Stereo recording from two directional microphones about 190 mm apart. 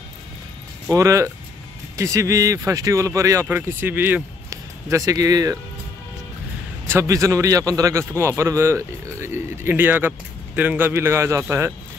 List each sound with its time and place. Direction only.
0.9 s speech: 15° right (ahead or behind)
6.9 s speech: 15° right (ahead or behind)